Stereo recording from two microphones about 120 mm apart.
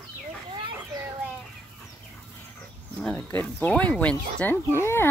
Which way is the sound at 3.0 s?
10° left (ahead or behind).